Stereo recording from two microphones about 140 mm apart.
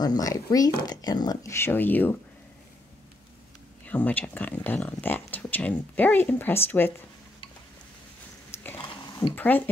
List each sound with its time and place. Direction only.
0.0 s speech: 25° left (ahead or behind)
3.8 s speech: 10° left (ahead or behind)
8.7 s dog: 40° left (ahead or behind)
9.3 s speech: 15° left (ahead or behind)